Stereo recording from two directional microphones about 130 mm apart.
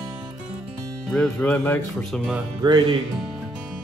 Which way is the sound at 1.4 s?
15° left (ahead or behind).